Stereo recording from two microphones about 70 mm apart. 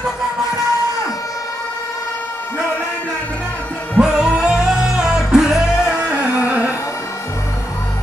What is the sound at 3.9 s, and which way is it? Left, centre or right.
Music, centre.